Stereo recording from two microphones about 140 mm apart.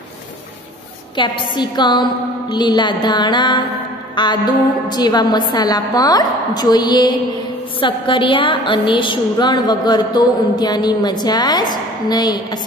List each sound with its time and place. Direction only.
1.1 s a woman's voice: 35° left (ahead or behind)